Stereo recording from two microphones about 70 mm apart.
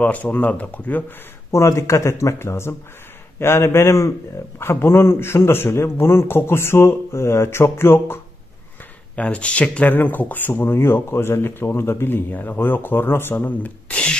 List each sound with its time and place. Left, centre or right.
0.0 s speech: left
1.5 s a man's voice: left
9.1 s a man's voice: centre